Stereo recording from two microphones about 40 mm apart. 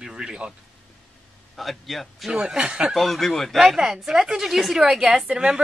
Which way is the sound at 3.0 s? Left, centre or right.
Centre.